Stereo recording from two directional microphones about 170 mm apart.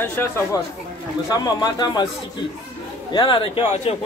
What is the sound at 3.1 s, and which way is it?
Speech, 30° left (ahead or behind).